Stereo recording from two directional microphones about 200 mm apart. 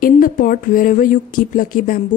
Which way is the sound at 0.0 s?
45° left (ahead or behind).